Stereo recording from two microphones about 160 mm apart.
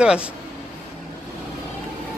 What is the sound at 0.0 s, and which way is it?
Speech, 5° right (ahead or behind).